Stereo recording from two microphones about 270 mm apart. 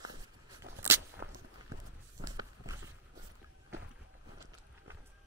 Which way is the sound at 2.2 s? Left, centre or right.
Centre.